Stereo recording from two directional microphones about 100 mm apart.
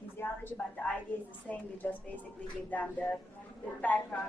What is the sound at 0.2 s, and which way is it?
A woman's voice, 20° left (ahead or behind).